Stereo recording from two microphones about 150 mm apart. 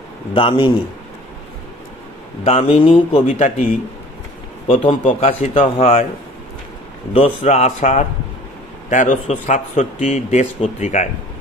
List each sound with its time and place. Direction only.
0.3 s a man's voice: 35° left (ahead or behind)
2.4 s speech: 40° left (ahead or behind)
4.6 s a man's voice: 40° left (ahead or behind)
5.0 s speech: 55° left (ahead or behind)
7.2 s speech: 45° left (ahead or behind)